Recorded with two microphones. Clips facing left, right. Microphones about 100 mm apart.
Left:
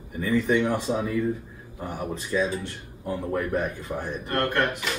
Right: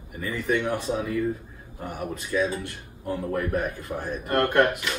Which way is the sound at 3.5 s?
20° left (ahead or behind).